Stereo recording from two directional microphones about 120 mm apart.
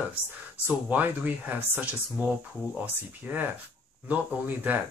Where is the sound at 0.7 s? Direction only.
15° right (ahead or behind).